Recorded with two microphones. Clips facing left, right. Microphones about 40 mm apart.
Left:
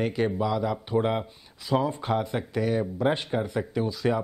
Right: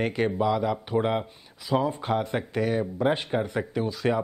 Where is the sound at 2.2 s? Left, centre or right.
Right.